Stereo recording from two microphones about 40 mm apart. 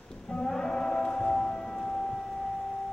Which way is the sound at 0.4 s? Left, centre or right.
Centre.